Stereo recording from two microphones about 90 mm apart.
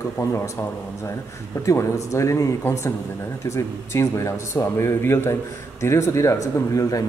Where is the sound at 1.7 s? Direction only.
35° left (ahead or behind).